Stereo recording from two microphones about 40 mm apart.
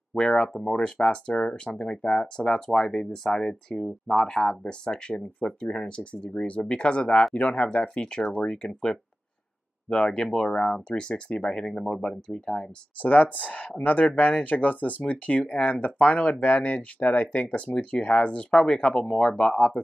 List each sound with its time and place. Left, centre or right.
0.1 s speech: centre
0.7 s speech: centre
2.4 s speech: centre
3.8 s speech: centre
4.3 s speech: centre
9.8 s speech: left
13.0 s speech: left